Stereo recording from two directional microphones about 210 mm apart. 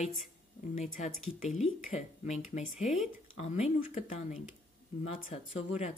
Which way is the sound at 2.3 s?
35° left (ahead or behind).